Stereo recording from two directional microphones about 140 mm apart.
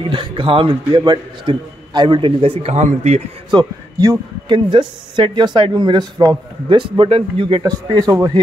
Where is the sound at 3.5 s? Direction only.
30° right (ahead or behind).